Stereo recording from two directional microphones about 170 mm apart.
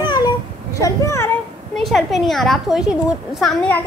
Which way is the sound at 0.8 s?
20° left (ahead or behind).